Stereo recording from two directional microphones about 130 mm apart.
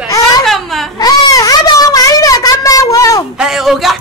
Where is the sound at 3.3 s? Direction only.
5° right (ahead or behind).